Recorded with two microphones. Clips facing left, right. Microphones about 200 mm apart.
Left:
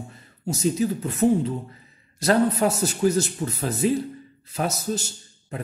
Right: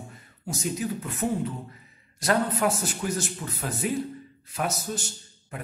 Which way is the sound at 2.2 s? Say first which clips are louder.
Left 5 dB; 30° left (ahead or behind).